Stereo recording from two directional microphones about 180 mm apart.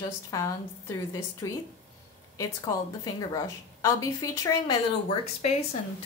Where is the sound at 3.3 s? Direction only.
15° left (ahead or behind).